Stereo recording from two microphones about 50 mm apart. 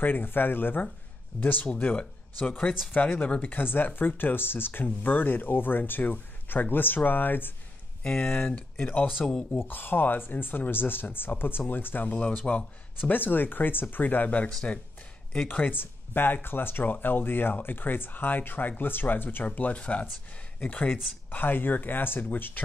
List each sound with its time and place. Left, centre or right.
0.0 s speech: left
2.9 s speech: left
3.4 s speech: left
8.3 s speech: left
9.2 s speech: centre
9.6 s speech: left
21.3 s speech: left